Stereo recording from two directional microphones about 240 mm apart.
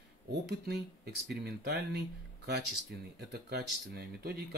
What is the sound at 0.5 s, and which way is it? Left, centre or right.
Speech, right.